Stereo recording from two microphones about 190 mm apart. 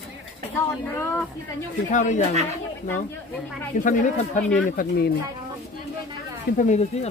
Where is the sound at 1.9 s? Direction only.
40° left (ahead or behind).